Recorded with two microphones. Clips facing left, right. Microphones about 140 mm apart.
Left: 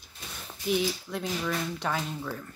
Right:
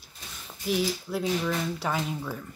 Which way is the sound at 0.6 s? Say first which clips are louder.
Even; centre (ahead or behind).